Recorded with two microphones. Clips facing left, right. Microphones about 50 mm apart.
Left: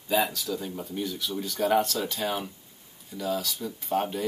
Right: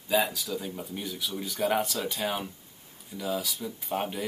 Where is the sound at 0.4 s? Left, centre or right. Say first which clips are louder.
Left 2 dB; centre.